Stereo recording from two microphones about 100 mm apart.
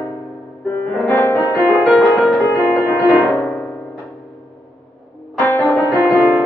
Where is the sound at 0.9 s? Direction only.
Centre (ahead or behind).